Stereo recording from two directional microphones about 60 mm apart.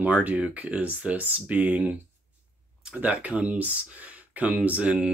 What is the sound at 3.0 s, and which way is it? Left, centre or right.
Speech, right.